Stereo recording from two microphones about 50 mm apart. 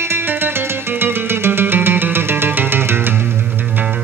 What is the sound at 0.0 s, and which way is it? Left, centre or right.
Music, right.